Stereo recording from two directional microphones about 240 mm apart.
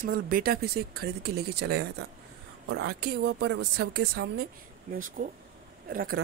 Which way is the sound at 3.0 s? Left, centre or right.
Right.